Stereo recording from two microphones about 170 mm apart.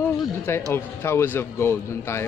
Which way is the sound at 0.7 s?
15° left (ahead or behind).